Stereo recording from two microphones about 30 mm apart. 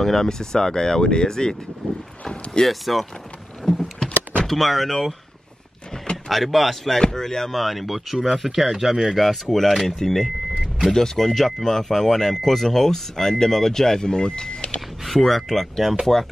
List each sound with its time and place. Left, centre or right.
0.0 s speech: centre
2.6 s speech: centre
3.6 s vehicle: centre
4.5 s speech: centre
6.3 s speech: centre
7.0 s speech: centre
7.5 s speech: centre
9.9 s speech: centre; by 14.7 s left
15.1 s speech: centre